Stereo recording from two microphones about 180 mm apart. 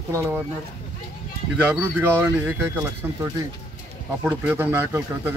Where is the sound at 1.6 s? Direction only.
10° right (ahead or behind).